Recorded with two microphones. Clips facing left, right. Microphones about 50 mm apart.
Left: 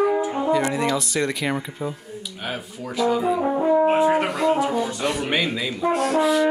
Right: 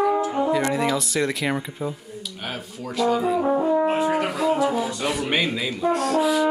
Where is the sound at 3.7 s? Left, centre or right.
Centre.